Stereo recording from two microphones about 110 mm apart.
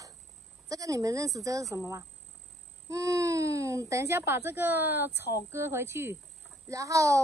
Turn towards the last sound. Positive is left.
turn(degrees=-30)  # may be behind; listen again after turning